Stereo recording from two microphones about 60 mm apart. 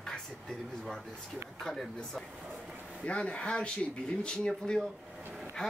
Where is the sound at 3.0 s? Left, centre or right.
Centre.